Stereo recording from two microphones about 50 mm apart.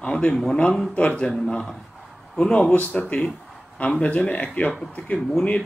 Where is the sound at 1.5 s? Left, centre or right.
Centre; by 5.2 s left.